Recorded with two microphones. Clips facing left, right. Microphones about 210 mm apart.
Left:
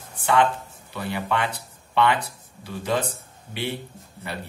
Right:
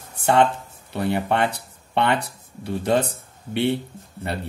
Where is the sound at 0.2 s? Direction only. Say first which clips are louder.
Right 3 dB; 65° right (ahead or behind).